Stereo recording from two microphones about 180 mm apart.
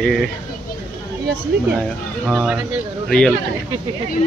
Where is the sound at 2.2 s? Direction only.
5° right (ahead or behind).